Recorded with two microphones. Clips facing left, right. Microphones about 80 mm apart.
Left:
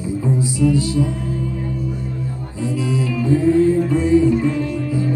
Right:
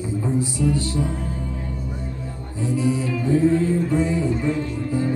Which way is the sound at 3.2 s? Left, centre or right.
Right.